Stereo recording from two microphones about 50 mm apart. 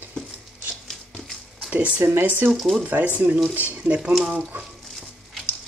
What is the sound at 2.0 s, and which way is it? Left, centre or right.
Speech, right.